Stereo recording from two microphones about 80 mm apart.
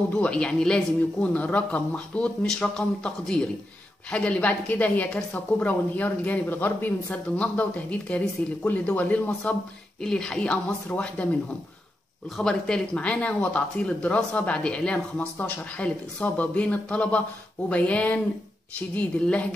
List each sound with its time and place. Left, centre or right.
0.1 s a woman's voice: centre
10.0 s speech: centre
12.4 s speech: centre